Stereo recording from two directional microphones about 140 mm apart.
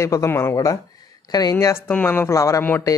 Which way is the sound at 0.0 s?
20° left (ahead or behind).